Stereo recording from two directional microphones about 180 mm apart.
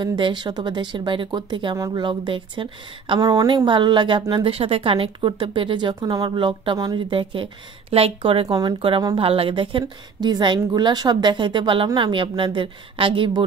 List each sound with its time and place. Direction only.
0.0 s speech: 25° right (ahead or behind)